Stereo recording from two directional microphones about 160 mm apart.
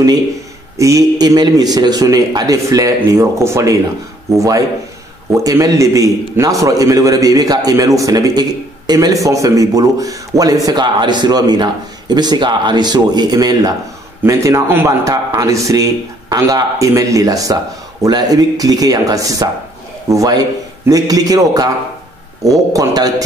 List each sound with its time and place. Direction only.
0.7 s a man's voice: 20° right (ahead or behind)